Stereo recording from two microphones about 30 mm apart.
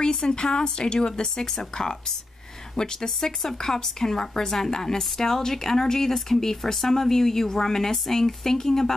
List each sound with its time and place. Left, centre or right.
0.0 s speech: left